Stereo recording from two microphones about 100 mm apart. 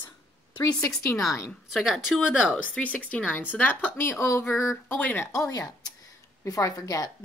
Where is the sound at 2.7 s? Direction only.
15° left (ahead or behind).